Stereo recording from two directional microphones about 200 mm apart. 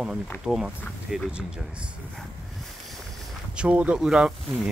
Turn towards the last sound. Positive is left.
turn(degrees=-5)  # may be behind; listen again after turning